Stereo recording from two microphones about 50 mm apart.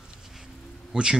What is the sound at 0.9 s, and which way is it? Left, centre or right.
Speech, centre.